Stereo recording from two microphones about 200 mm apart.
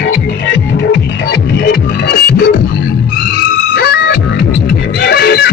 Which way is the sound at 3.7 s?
55° left (ahead or behind).